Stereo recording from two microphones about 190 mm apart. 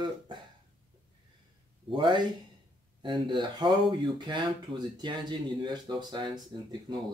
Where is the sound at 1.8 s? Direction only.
25° right (ahead or behind).